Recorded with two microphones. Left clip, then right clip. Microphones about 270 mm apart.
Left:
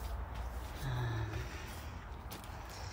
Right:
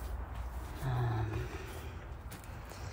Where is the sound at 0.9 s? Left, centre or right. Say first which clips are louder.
Right 4 dB; centre.